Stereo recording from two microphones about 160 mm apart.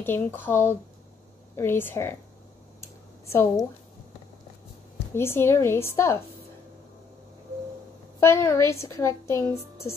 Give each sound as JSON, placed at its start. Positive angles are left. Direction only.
{"t": 0.0, "sound": "a woman's voice", "side_deg": 15}
{"t": 2.8, "sound": "a sound", "side_deg": 15}
{"t": 5.1, "sound": "a woman's voice", "side_deg": 15}
{"t": 8.2, "sound": "a woman's voice", "side_deg": 15}